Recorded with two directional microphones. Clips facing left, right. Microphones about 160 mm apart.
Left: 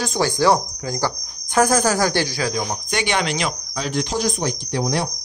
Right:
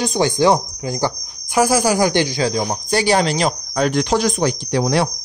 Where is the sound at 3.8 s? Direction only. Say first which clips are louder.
Right 6 dB; 65° right (ahead or behind); by 5.1 s 90° right.